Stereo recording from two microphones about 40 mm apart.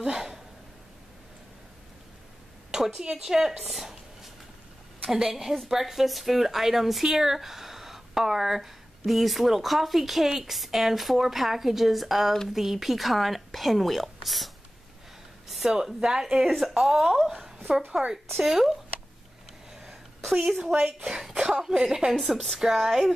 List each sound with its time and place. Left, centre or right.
0.0 s a sound: centre
3.0 s a woman's voice: centre
15.4 s a sound: centre
15.7 s a woman's voice: centre
16.4 s a woman's voice: centre
17.7 s a woman's voice: right
18.4 s a woman's voice: centre
19.7 s a sound: centre
20.6 s a woman's voice: centre
22.1 s speech: centre